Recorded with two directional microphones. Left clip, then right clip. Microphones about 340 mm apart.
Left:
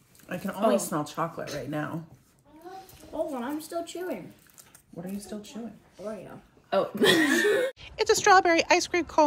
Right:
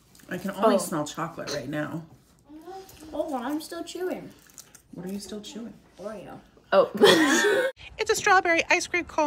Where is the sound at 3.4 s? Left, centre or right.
Centre.